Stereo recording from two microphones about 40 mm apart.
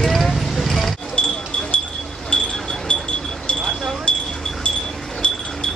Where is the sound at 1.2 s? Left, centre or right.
Left.